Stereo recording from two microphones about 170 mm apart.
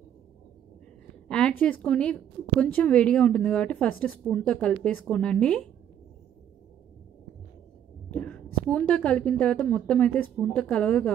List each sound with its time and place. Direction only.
1.6 s speech: 10° left (ahead or behind)
8.1 s a woman's voice: 5° left (ahead or behind)